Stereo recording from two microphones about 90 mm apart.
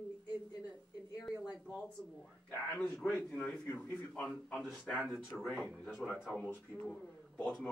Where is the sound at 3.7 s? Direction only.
20° left (ahead or behind).